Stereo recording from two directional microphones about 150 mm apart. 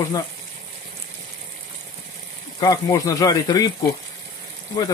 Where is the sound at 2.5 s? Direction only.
25° left (ahead or behind).